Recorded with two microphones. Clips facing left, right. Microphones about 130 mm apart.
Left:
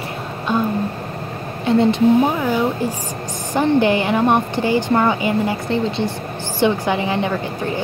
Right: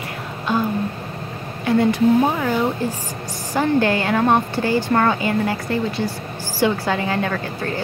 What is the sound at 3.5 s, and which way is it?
Speech, 20° left (ahead or behind).